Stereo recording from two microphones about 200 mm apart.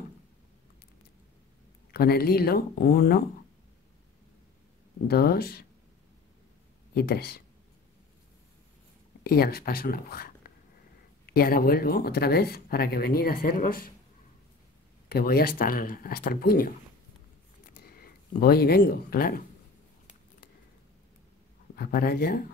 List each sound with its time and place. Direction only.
1.9 s speech: 50° left (ahead or behind)
5.0 s speech: 50° left (ahead or behind)
6.9 s speech: 50° left (ahead or behind)
9.2 s speech: 50° left (ahead or behind)
15.0 s speech: 50° left (ahead or behind)
17.8 s speech: 50° left (ahead or behind)
21.7 s speech: 50° left (ahead or behind)